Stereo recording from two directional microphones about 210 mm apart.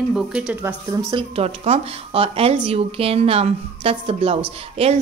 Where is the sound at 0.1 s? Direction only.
5° right (ahead or behind).